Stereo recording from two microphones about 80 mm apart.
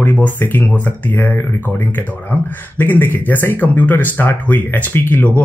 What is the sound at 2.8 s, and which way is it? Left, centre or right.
Speech, left.